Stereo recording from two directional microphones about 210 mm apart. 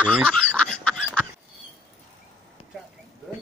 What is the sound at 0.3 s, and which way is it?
Duck, 5° left (ahead or behind).